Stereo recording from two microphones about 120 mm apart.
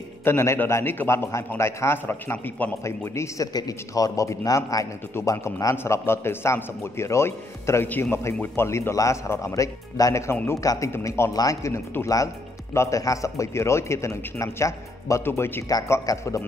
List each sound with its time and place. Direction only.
0.2 s speech: 20° left (ahead or behind)